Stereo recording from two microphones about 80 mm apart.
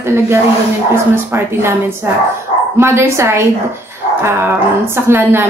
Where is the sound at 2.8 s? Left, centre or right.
Right.